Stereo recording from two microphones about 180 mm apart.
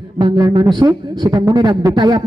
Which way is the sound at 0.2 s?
20° right (ahead or behind).